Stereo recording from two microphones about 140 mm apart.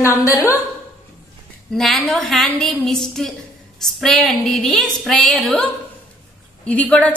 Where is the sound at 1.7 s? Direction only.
Centre (ahead or behind).